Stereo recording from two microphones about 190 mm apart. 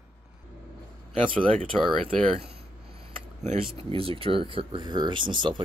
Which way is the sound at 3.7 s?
30° right (ahead or behind).